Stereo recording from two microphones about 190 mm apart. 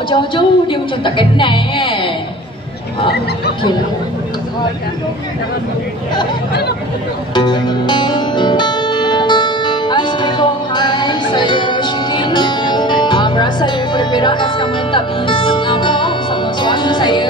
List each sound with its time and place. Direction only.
0.1 s a woman's voice: 25° left (ahead or behind)
7.3 s music: 25° left (ahead or behind)